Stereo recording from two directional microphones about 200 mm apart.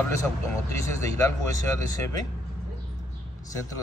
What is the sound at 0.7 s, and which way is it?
Speech, 15° left (ahead or behind).